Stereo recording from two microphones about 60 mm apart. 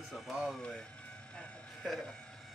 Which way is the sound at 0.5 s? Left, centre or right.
Centre.